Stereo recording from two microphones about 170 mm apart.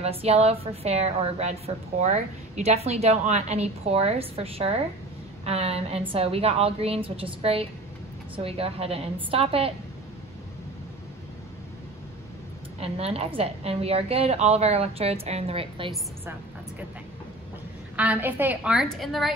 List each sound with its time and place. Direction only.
0.0 s a woman's voice: 35° right (ahead or behind)
12.8 s a woman's voice: 35° right (ahead or behind)
17.9 s a woman's voice: 10° right (ahead or behind)